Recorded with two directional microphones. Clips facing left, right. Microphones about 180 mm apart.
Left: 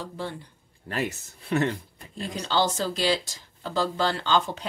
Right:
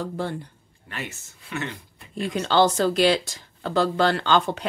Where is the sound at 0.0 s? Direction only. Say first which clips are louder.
Right 5 dB; 55° right (ahead or behind).